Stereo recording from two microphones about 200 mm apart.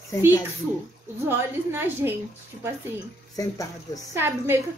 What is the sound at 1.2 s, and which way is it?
Speech, 10° right (ahead or behind).